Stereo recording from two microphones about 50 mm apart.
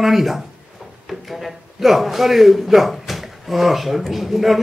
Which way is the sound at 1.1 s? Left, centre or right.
Centre.